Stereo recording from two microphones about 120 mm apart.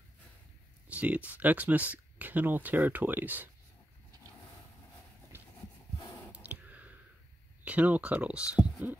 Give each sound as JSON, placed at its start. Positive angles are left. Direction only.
{"t": 0.8, "sound": "speech", "side_deg": -10}
{"t": 5.3, "sound": "horse", "side_deg": -20}
{"t": 6.3, "sound": "a sound", "side_deg": -10}
{"t": 7.6, "sound": "speech", "side_deg": -10}